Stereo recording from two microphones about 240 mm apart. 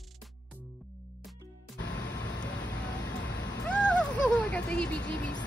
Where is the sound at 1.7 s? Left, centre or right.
Left.